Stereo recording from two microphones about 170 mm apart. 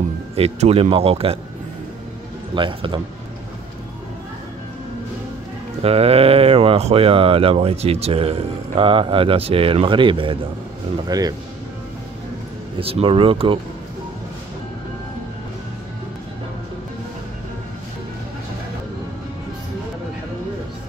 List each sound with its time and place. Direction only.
0.4 s speech: 35° right (ahead or behind)
2.5 s a man's voice: 30° right (ahead or behind)
5.8 s a man's voice: 35° right (ahead or behind)
12.7 s speech: 35° right (ahead or behind)